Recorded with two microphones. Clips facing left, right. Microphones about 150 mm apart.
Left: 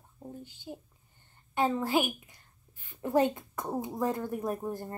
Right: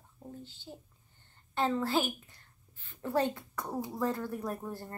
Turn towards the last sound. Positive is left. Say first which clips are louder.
# left 4 dB
turn(degrees=15)  # may be behind; listen again after turning